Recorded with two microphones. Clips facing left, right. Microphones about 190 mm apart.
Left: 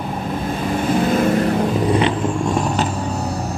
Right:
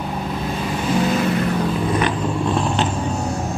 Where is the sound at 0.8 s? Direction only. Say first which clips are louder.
Left 2 dB; 50° left (ahead or behind).